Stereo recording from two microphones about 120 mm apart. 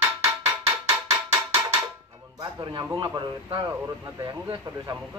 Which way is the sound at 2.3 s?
35° right (ahead or behind).